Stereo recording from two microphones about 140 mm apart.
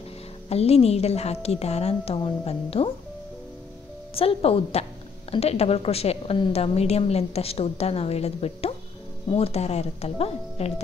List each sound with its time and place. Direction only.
0.5 s a woman's voice: 45° left (ahead or behind)
4.1 s a woman's voice: 45° left (ahead or behind)